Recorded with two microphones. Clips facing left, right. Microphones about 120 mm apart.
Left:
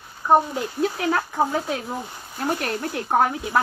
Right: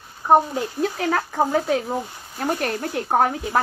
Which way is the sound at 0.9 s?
40° right (ahead or behind).